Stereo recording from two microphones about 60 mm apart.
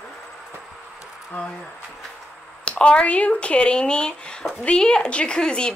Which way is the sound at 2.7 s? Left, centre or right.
Centre.